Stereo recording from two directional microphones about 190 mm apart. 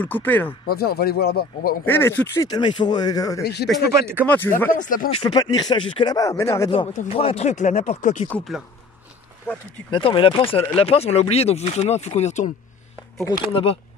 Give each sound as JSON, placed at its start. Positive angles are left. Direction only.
{"t": 0.0, "sound": "speech", "side_deg": 10}
{"t": 0.7, "sound": "speech", "side_deg": 55}
{"t": 1.9, "sound": "speech", "side_deg": 10}
{"t": 4.7, "sound": "speech", "side_deg": 45}
{"t": 5.1, "sound": "speech", "side_deg": 30}
{"t": 6.7, "sound": "speech", "side_deg": 35}
{"t": 8.3, "sound": "speech", "side_deg": 0}
{"t": 9.8, "sound": "speech", "side_deg": 25}
{"t": 13.5, "sound": "speech", "side_deg": 30}